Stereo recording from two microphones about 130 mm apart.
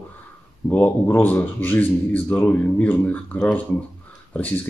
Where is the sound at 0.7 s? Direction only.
15° left (ahead or behind).